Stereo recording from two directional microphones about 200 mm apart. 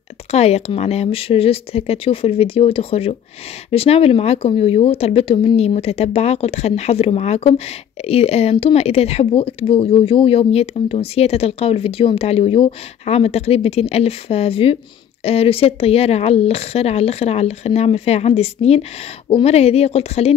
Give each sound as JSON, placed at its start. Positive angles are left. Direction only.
{"t": 0.3, "sound": "speech", "side_deg": 30}